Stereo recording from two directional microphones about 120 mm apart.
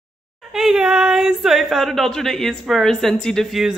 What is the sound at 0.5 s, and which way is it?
A woman's voice, 5° right (ahead or behind).